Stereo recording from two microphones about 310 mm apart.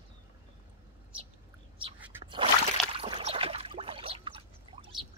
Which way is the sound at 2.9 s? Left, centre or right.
Centre.